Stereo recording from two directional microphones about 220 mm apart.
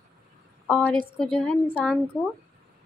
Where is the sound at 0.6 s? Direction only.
5° left (ahead or behind).